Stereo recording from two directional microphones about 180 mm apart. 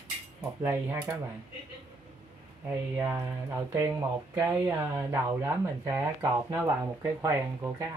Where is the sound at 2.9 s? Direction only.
15° right (ahead or behind).